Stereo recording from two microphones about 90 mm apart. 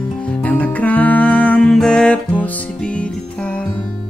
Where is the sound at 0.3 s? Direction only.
15° left (ahead or behind).